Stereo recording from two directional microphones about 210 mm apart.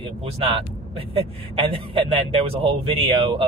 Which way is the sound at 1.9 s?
25° right (ahead or behind).